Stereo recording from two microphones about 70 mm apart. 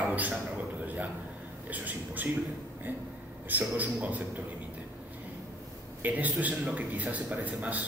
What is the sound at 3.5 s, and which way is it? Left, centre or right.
Speech, right.